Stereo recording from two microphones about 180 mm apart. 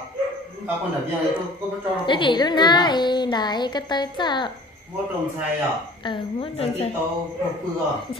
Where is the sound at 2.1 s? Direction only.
25° left (ahead or behind).